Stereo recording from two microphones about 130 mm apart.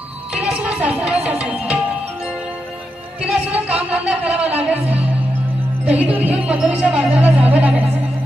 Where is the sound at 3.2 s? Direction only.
10° right (ahead or behind).